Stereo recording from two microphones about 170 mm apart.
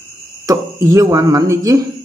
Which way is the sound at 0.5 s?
20° right (ahead or behind).